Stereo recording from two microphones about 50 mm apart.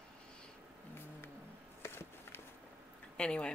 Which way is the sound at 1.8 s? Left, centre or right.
Left.